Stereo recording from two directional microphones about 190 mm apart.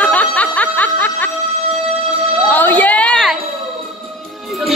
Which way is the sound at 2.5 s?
10° left (ahead or behind).